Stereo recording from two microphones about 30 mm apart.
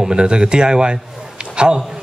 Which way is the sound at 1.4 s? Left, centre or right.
Right.